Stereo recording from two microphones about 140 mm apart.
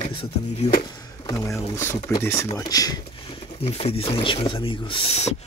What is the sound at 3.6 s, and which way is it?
Speech, 45° left (ahead or behind).